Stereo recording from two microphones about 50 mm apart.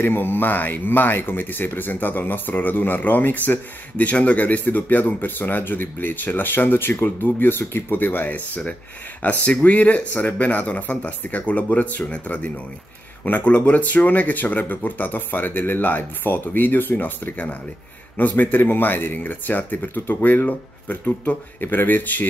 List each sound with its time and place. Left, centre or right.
0.0 s speech: left
9.2 s speech: left